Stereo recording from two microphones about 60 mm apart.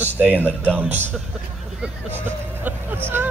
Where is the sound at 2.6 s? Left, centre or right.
Right.